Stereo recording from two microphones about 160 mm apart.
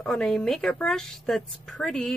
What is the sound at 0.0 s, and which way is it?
Speech, centre (ahead or behind).